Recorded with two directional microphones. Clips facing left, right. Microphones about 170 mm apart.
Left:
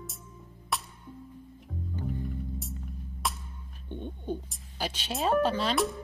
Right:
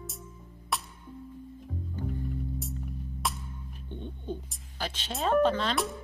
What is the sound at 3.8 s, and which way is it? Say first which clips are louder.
Bird: left 3 dB; 15° left (ahead or behind).